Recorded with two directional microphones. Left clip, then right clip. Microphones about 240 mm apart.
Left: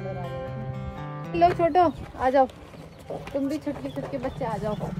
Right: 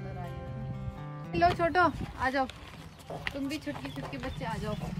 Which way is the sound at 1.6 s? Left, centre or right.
Right.